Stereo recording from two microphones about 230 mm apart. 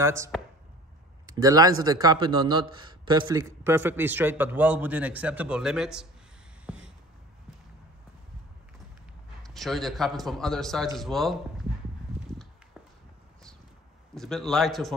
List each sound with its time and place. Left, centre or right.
0.0 s a man's voice: centre
6.7 s a sound: centre
9.4 s a man's voice: centre
14.1 s a man's voice: centre